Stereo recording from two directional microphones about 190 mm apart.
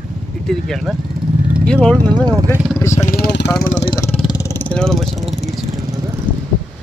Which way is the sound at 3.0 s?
50° left (ahead or behind).